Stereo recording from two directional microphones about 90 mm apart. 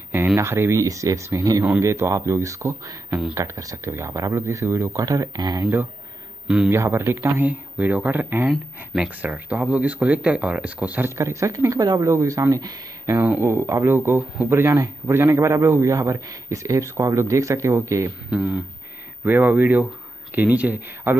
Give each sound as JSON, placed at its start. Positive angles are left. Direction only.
{"t": 0.4, "sound": "speech", "side_deg": -30}
{"t": 5.6, "sound": "speech", "side_deg": -25}
{"t": 6.4, "sound": "a man's voice", "side_deg": -10}
{"t": 6.7, "sound": "speech", "side_deg": -25}
{"t": 8.5, "sound": "speech", "side_deg": -10}
{"t": 11.1, "sound": "speech", "side_deg": -30}
{"t": 12.1, "sound": "speech", "side_deg": -35}
{"t": 13.2, "sound": "speech", "side_deg": -25}
{"t": 18.3, "sound": "speech", "side_deg": -10}